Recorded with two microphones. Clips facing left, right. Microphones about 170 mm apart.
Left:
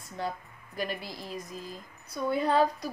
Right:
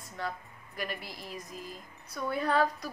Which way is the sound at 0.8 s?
30° left (ahead or behind).